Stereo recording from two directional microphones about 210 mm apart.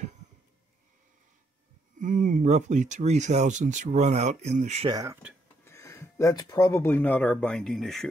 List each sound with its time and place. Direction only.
2.0 s speech: 40° right (ahead or behind)
4.9 s speech: 15° right (ahead or behind)
5.7 s speech: 15° left (ahead or behind)